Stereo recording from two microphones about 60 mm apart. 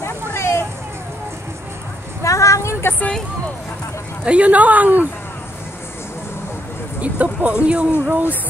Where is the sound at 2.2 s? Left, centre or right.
Left.